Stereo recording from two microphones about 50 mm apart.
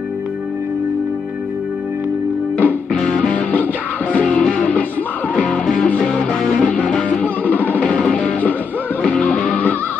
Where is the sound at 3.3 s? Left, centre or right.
Left.